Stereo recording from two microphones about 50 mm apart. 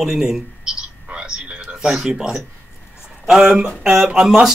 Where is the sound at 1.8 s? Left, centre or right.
Centre.